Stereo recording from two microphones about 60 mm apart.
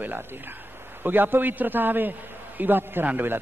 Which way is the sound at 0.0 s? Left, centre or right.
Right.